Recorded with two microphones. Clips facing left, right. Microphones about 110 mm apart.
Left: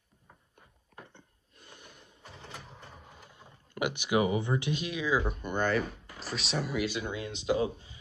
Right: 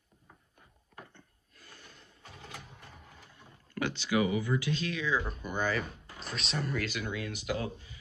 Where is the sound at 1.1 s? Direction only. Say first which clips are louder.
Left 2 dB; 20° left (ahead or behind).